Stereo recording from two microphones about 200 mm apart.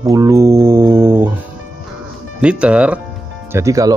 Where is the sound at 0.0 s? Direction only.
15° right (ahead or behind).